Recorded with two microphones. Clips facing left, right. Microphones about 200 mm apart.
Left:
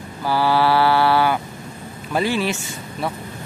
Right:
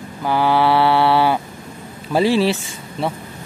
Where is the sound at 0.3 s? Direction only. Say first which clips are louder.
Right 2 dB; 20° right (ahead or behind).